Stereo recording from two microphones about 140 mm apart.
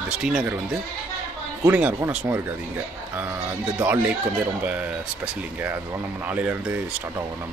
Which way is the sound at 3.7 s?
10° right (ahead or behind).